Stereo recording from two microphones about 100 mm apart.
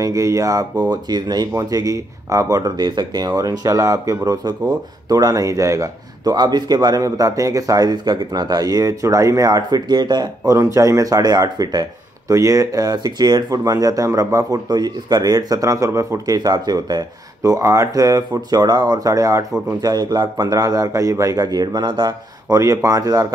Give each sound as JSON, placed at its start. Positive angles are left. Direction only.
{"t": 0.0, "sound": "speech", "side_deg": -35}
{"t": 16.3, "sound": "speech", "side_deg": -45}
{"t": 22.5, "sound": "speech", "side_deg": -30}